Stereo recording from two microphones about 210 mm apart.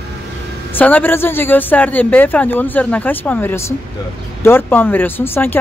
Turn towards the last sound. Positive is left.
turn(degrees=10)  # may be behind; listen again after turning